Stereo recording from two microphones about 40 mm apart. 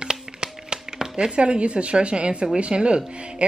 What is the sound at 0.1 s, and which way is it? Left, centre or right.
Speech, right.